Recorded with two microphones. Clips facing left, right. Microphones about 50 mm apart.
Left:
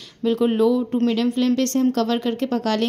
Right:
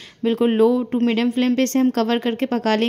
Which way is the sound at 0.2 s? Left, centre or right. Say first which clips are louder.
Right 2 dB; right.